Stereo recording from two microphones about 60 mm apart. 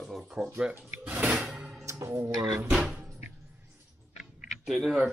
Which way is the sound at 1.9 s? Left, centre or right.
Right.